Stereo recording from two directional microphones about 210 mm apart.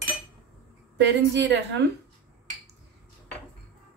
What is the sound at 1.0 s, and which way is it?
Speech, 55° right (ahead or behind).